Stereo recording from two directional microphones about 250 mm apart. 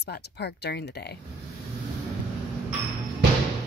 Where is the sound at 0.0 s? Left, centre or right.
Left.